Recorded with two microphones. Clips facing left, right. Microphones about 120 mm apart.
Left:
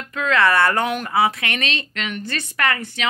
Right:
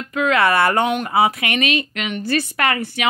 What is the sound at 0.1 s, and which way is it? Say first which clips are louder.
Speech: right 1 dB; 15° right (ahead or behind).